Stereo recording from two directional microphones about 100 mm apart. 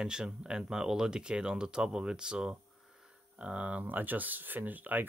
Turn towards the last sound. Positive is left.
turn(degrees=-15)  # may be behind; listen again after turning